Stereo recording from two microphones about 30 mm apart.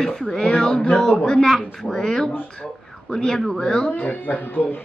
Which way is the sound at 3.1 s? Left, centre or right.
Left.